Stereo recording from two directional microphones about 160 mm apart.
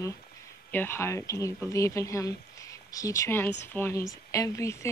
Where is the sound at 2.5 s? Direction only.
20° left (ahead or behind).